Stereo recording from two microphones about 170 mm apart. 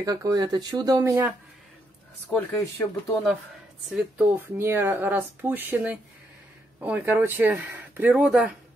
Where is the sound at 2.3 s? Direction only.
5° left (ahead or behind).